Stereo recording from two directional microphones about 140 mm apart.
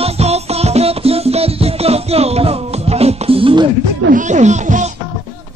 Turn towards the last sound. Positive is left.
turn(degrees=-60)  # may be behind; listen again after turning